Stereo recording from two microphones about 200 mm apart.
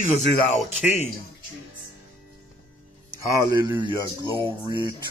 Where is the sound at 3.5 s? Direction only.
20° right (ahead or behind).